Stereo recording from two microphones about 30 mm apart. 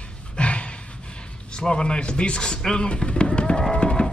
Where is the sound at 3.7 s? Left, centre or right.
Left.